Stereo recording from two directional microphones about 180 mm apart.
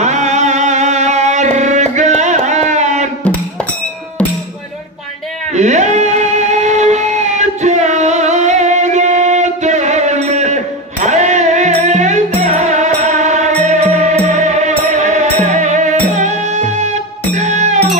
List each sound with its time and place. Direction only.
0.0 s music: 40° right (ahead or behind)
5.5 s music: 40° right (ahead or behind)